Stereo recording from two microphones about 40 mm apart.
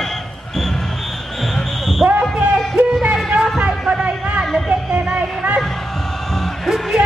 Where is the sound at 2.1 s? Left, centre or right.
Right.